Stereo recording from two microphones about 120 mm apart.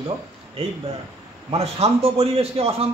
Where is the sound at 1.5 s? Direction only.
60° right (ahead or behind).